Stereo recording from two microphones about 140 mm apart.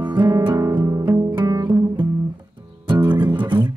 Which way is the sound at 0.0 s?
30° right (ahead or behind).